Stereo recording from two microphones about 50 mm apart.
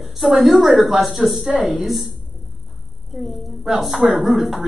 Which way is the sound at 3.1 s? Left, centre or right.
Centre.